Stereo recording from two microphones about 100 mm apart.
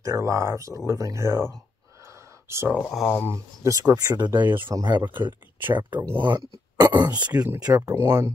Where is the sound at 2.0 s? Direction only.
30° right (ahead or behind).